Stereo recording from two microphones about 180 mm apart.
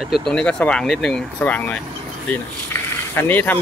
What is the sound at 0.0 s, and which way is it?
Speech, centre (ahead or behind).